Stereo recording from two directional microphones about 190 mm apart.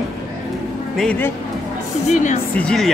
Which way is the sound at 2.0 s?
40° left (ahead or behind).